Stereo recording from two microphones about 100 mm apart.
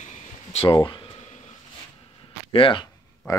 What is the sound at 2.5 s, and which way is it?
Speech, 60° left (ahead or behind).